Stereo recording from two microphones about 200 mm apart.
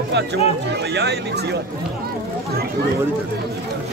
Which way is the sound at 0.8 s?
55° right (ahead or behind).